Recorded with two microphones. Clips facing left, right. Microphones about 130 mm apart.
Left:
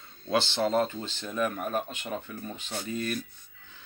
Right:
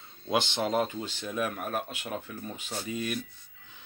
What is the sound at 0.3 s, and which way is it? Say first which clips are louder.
Speech: left 2 dB; 15° right (ahead or behind).